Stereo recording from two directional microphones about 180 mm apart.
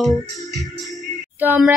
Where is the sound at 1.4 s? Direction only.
10° right (ahead or behind).